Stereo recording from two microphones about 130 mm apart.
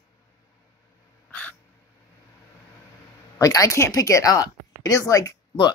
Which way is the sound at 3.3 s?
25° left (ahead or behind).